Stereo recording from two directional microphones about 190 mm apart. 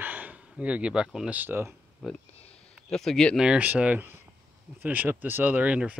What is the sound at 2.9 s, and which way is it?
Speech, centre (ahead or behind).